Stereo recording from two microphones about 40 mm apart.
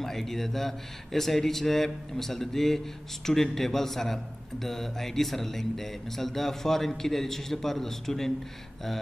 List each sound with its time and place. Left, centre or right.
0.0 s speech: centre